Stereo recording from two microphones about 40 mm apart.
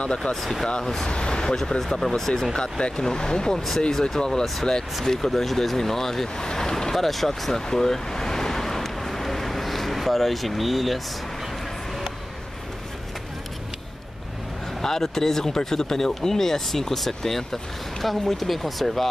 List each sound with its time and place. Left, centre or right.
0.0 s speech: left
0.3 s speech: centre
0.7 s speech: centre
1.7 s speech: centre
2.5 s speech: left; by 11.0 s centre
14.8 s speech: centre